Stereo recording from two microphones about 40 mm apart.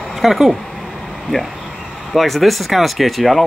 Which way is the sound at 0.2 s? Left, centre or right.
Centre.